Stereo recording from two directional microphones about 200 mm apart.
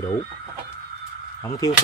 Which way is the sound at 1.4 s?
15° left (ahead or behind).